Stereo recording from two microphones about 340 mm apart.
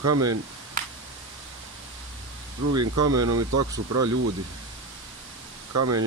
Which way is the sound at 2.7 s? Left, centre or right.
Right.